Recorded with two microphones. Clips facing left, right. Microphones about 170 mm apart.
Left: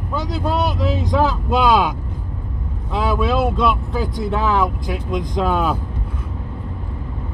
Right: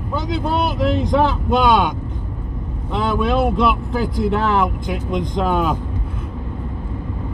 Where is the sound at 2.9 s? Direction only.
Centre (ahead or behind).